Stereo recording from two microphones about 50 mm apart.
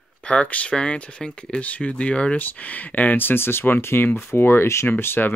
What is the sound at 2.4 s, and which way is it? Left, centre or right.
Speech, left.